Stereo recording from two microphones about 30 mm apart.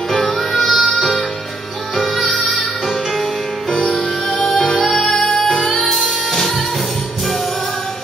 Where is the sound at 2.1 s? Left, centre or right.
Centre.